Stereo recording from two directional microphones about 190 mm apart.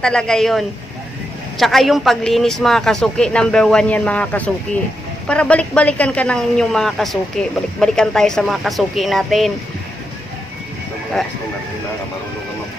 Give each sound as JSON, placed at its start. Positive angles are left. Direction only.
{"t": 0.0, "sound": "speech", "side_deg": 5}